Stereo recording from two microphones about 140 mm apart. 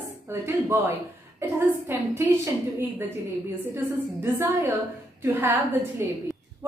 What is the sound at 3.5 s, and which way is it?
A woman's voice, 15° right (ahead or behind).